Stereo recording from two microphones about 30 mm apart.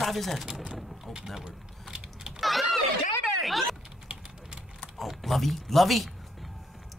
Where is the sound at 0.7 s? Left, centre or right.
Centre.